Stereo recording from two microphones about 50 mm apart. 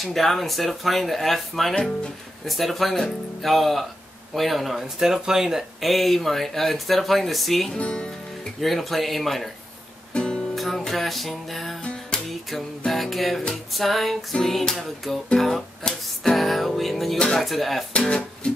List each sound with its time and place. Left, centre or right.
0.0 s speech: centre
7.7 s music: centre
8.5 s speech: centre
10.1 s music: centre
10.5 s music: centre
12.3 s speech: centre
14.3 s music: centre
15.3 s speech: centre
18.0 s speech: centre